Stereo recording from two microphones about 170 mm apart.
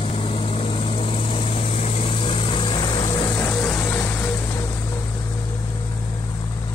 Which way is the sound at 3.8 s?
15° left (ahead or behind).